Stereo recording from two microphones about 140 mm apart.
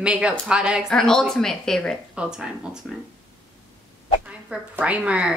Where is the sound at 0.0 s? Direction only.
5° right (ahead or behind).